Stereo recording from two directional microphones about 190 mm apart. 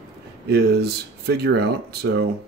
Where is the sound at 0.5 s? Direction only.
60° right (ahead or behind).